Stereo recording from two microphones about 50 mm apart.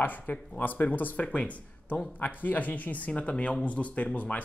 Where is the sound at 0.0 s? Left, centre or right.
Left.